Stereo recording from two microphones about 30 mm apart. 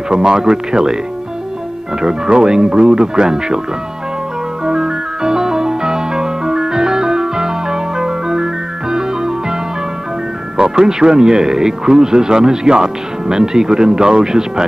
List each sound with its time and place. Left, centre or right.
0.1 s speech: right
2.0 s speech: right
4.6 s music: right
10.6 s speech: right